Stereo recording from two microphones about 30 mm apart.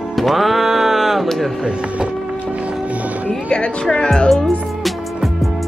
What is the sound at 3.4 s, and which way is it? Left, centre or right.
Speech, left.